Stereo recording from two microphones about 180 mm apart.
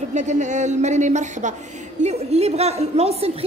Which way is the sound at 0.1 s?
40° right (ahead or behind).